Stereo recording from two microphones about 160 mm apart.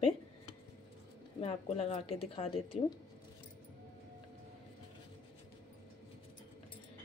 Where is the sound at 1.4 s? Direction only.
40° left (ahead or behind).